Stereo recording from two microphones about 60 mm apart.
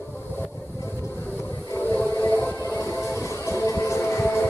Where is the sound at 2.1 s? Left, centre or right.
Left.